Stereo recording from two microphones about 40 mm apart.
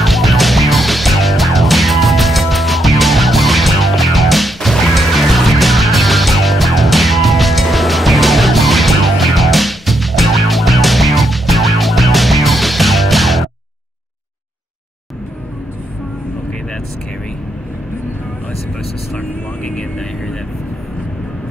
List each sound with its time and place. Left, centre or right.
0.0 s music: centre
19.1 s vehicle: left